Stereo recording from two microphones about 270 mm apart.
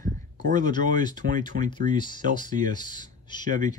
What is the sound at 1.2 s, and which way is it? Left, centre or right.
Speech, right.